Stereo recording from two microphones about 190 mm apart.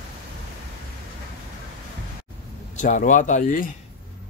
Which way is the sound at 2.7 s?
40° left (ahead or behind).